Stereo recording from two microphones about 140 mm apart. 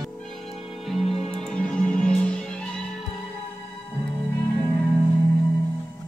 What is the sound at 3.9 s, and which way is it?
Music, 15° left (ahead or behind).